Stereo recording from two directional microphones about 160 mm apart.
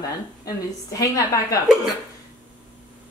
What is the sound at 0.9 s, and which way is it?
Speech, 20° left (ahead or behind).